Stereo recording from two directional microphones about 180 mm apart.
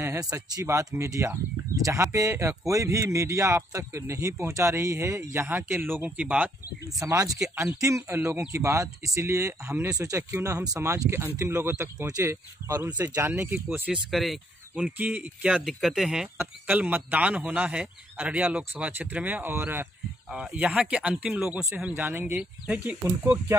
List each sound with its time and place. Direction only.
0.0 s speech: 15° right (ahead or behind)